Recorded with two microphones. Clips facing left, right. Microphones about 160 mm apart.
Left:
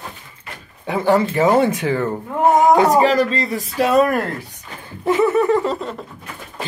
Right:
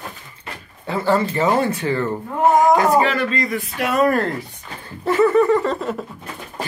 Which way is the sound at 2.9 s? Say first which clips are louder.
Left 3 dB; 40° left (ahead or behind).